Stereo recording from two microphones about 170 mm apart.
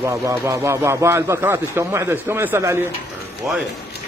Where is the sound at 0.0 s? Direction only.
15° right (ahead or behind).